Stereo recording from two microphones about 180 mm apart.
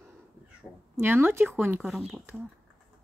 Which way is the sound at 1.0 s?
10° right (ahead or behind).